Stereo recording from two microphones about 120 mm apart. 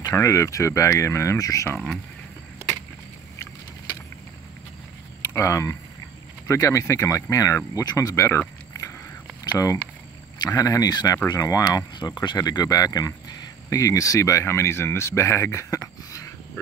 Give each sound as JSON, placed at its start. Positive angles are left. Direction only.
{"t": 0.1, "sound": "speech", "side_deg": 25}
{"t": 5.2, "sound": "speech", "side_deg": 25}
{"t": 10.4, "sound": "speech", "side_deg": 30}